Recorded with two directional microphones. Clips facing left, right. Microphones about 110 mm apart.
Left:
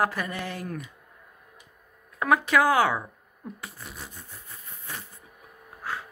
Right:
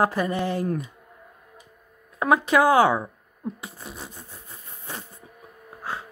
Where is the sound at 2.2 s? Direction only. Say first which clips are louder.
Right 3 dB; 25° right (ahead or behind).